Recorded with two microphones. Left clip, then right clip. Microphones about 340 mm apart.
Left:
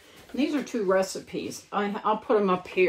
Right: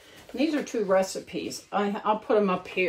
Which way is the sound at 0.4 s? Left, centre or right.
Centre.